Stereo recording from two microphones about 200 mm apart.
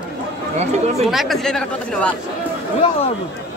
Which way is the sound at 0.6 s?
35° right (ahead or behind).